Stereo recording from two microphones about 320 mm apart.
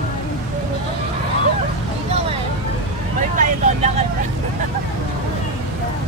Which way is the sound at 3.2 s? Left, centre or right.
Right.